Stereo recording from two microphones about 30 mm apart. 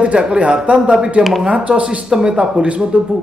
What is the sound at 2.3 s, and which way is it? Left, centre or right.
Speech, right.